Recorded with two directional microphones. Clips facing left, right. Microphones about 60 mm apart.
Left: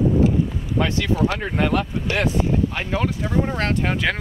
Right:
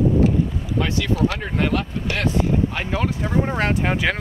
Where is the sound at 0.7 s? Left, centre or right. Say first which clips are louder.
Left 1 dB; left.